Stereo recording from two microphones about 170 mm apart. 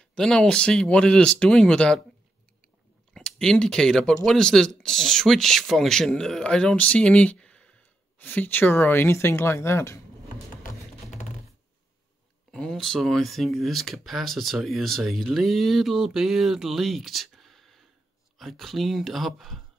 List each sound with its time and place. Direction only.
0.0 s speech: 5° left (ahead or behind)
3.1 s speech: 5° left (ahead or behind)
10.6 s music: 45° left (ahead or behind)
12.4 s speech: 5° left (ahead or behind)